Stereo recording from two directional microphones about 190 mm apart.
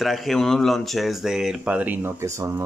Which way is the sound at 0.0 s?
Centre (ahead or behind).